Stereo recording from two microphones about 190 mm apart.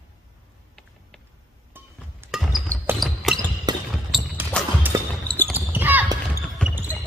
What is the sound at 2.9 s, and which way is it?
Basketball bounce, centre (ahead or behind).